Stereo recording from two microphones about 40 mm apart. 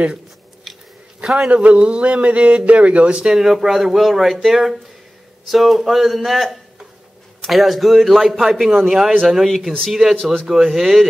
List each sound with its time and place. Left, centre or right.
0.7 s chewing: centre
1.2 s a man's voice: centre
1.5 s speech: right
3.3 s speech: centre
10.1 s speech: centre
10.4 s speech: centre